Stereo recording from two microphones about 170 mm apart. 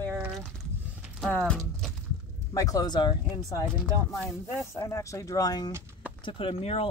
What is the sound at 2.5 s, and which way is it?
Speech, 20° left (ahead or behind).